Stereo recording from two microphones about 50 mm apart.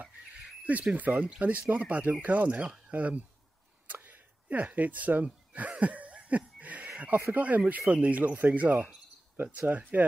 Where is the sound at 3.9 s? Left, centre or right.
Right.